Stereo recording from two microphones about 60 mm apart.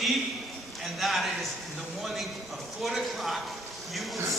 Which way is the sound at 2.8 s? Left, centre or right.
Centre.